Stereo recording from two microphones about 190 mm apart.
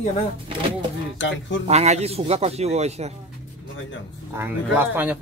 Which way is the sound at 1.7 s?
35° right (ahead or behind).